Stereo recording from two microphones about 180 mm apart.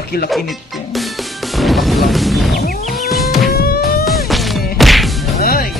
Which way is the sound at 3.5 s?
60° left (ahead or behind).